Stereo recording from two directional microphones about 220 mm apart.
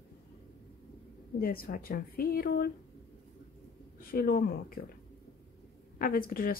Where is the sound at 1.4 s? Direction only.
45° left (ahead or behind).